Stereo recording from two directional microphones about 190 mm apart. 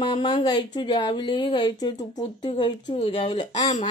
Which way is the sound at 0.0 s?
25° left (ahead or behind).